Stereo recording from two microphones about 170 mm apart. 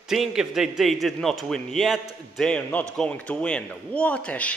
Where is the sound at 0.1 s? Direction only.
Centre (ahead or behind).